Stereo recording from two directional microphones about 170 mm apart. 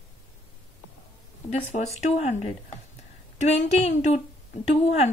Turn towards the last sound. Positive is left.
turn(degrees=40)  # may be behind; listen again after turning